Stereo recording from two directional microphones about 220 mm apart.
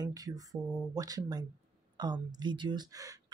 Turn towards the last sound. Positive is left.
turn(degrees=-15)  # may be behind; listen again after turning